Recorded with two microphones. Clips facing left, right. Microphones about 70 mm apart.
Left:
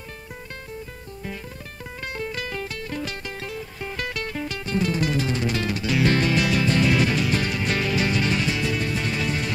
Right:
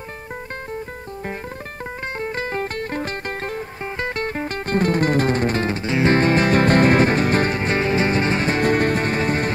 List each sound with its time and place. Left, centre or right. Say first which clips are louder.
2.1 s music: right 5 dB; right